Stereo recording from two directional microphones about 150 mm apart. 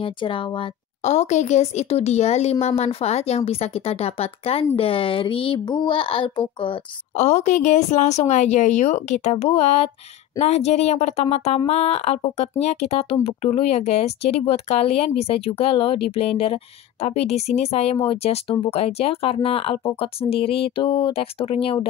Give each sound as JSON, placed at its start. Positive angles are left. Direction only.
{"t": 0.0, "sound": "speech", "side_deg": 35}
{"t": 1.0, "sound": "a woman's voice", "side_deg": 50}
{"t": 7.2, "sound": "a woman's voice", "side_deg": 50}